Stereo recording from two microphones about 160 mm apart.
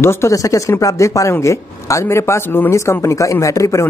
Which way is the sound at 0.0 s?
15° left (ahead or behind).